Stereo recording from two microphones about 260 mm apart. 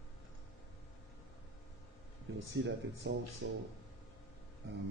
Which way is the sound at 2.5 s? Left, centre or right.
Right.